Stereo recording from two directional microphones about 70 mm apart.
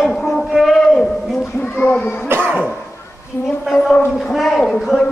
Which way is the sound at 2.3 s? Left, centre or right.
Right.